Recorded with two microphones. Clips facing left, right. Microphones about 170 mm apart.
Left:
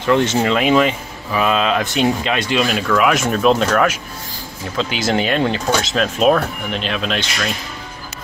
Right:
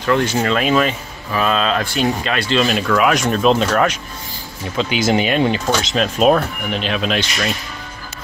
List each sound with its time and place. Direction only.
0.0 s speech: 20° left (ahead or behind); by 7.5 s 5° right (ahead or behind)